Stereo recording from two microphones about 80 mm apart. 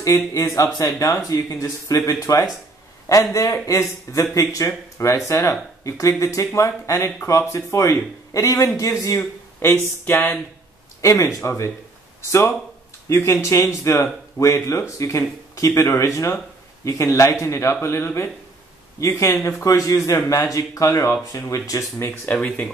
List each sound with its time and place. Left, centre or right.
0.0 s speech: left
11.0 s speech: left
22.2 s speech: centre